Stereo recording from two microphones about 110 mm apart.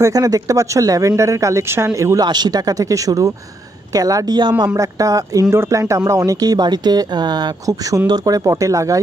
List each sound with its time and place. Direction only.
0.0 s speech: 35° right (ahead or behind)
2.2 s speech: 40° right (ahead or behind)
4.7 s speech: 30° right (ahead or behind)